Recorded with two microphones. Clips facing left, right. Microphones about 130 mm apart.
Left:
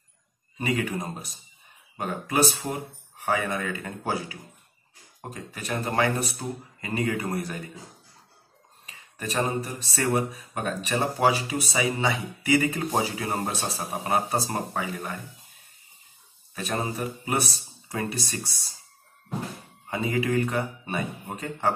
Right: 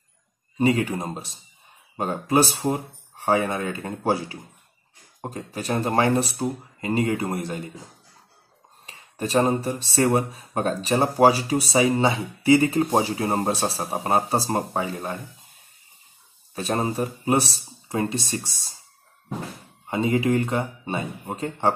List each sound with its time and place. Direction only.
0.6 s speech: 30° right (ahead or behind)
8.8 s a sound: 30° right (ahead or behind)
9.6 s speech: 30° right (ahead or behind)
16.5 s speech: 35° right (ahead or behind)
19.9 s speech: 25° right (ahead or behind)